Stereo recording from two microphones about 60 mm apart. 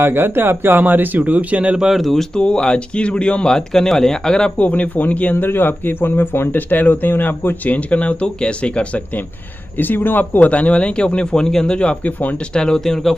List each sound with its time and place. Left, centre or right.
0.0 s speech: right
2.0 s speech: centre
2.3 s speech: centre
4.6 s speech: left
9.8 s speech: left
12.5 s speech: centre